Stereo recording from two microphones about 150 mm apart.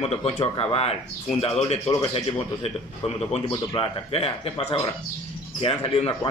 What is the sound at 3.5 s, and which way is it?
Speech, 25° left (ahead or behind).